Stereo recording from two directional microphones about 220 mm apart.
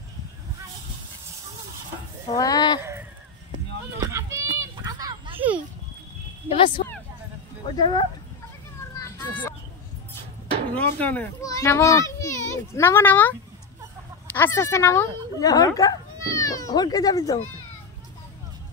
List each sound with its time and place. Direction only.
2.3 s a child's voice: 15° left (ahead or behind)
2.8 s a sound: 10° right (ahead or behind)
6.8 s a sound: 35° left (ahead or behind)
7.6 s speech: 20° left (ahead or behind)
9.0 s children playing: 5° left (ahead or behind)
10.7 s a child's voice: 5° left (ahead or behind)